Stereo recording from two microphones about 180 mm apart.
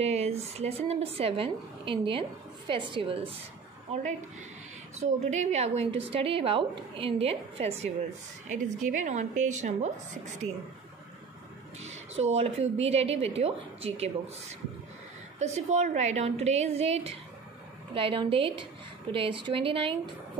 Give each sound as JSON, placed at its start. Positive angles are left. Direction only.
{"t": 0.0, "sound": "speech", "side_deg": -35}
{"t": 5.0, "sound": "speech", "side_deg": -40}
{"t": 11.8, "sound": "a sound", "side_deg": -90}
{"t": 12.2, "sound": "speech", "side_deg": -35}
{"t": 15.3, "sound": "a woman's voice", "side_deg": -40}